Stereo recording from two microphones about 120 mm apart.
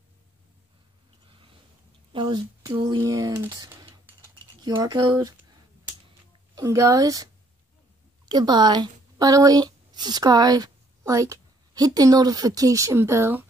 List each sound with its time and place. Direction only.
1.2 s a sound: 45° right (ahead or behind)
3.0 s speech: 30° right (ahead or behind)
6.5 s speech: 25° right (ahead or behind)
8.3 s a woman's voice: 35° right (ahead or behind); by 13.5 s 20° right (ahead or behind)